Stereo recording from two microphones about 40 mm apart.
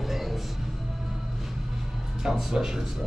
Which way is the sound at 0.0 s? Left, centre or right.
Centre.